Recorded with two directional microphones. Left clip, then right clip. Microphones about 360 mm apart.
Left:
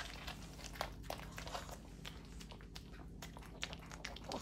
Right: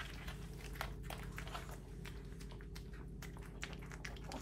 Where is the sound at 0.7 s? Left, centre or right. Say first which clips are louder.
Left 3 dB; left.